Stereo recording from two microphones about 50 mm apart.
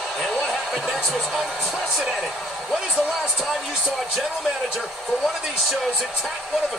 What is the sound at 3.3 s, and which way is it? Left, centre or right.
Speech, centre.